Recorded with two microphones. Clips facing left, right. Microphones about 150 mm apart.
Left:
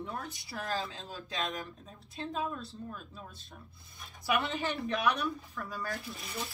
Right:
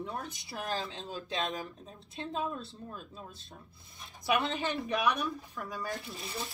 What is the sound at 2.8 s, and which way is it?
Speech, 20° right (ahead or behind).